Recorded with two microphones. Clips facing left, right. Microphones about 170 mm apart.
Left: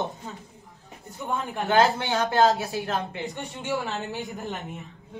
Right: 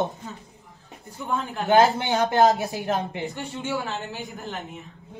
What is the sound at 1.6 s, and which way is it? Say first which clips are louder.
Speech: right 3 dB; 20° right (ahead or behind).